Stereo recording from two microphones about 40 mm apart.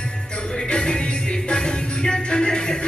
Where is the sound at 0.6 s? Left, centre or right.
Left.